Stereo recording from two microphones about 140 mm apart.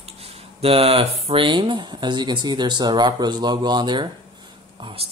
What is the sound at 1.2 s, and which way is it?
Speech, 40° right (ahead or behind).